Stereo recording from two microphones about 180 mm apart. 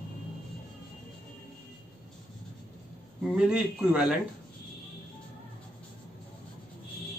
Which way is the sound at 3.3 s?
5° right (ahead or behind).